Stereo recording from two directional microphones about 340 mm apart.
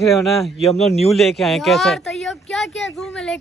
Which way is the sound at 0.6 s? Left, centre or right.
Centre.